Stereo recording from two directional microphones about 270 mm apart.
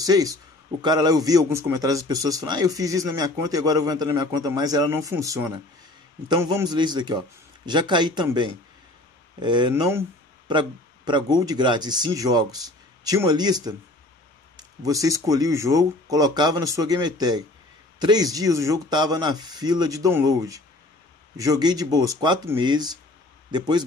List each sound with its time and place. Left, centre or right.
0.0 s a man's voice: centre